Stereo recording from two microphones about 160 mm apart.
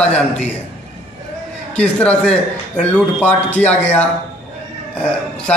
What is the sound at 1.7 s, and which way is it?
A man's voice, 10° left (ahead or behind).